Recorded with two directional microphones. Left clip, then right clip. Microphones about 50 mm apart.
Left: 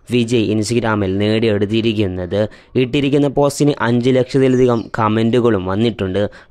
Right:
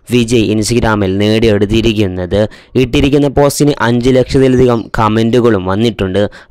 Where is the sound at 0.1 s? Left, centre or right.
Right.